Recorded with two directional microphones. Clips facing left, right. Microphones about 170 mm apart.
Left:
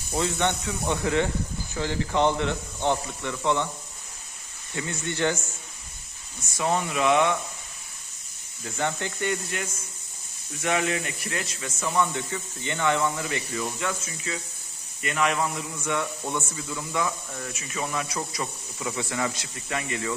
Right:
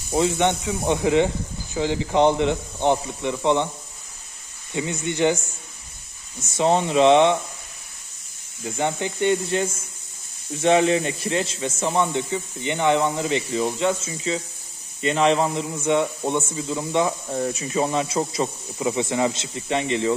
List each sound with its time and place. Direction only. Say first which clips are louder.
0.1 s speech: right 6 dB; 20° right (ahead or behind)
4.7 s speech: right 5 dB; 15° right (ahead or behind)
6.4 s speech: right 6 dB; 25° right (ahead or behind)
8.6 s speech: right 4 dB; 20° right (ahead or behind)